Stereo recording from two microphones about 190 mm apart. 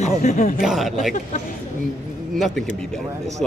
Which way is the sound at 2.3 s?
Centre (ahead or behind).